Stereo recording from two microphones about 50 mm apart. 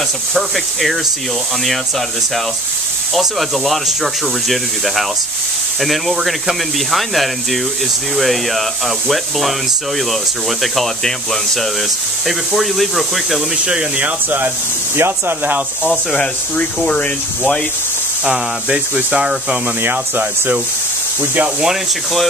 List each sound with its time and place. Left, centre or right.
0.3 s speech: centre
3.2 s speech: centre
10.6 s speech: centre
13.7 s speech: right
15.0 s speech: right
16.5 s speech: left
18.2 s speech: centre
19.8 s speech: right